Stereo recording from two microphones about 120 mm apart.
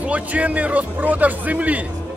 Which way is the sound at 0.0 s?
10° right (ahead or behind).